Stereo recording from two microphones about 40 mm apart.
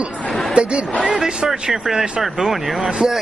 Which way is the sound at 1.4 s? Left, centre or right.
Centre.